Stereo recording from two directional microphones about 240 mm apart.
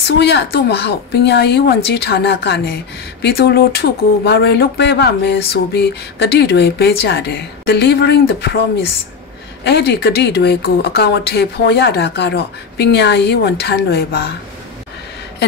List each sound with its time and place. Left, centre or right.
0.2 s speech: left
9.7 s speech: left